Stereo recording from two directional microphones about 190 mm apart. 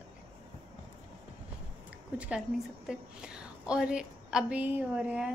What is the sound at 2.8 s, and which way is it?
A woman's voice, 5° right (ahead or behind).